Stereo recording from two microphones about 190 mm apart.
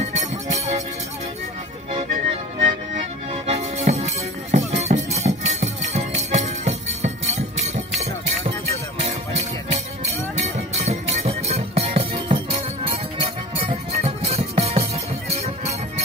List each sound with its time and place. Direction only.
0.0 s music: 35° right (ahead or behind)
2.6 s music: 35° right (ahead or behind)
9.0 s music: 35° right (ahead or behind)